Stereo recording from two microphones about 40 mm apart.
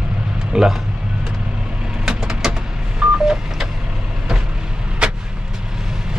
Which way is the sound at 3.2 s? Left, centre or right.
Centre.